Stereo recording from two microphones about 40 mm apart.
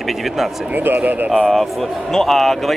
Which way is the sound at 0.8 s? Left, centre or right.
Right.